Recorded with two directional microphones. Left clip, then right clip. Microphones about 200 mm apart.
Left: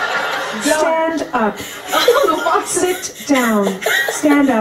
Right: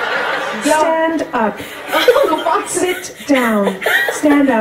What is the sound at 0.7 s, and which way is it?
Speech, centre (ahead or behind).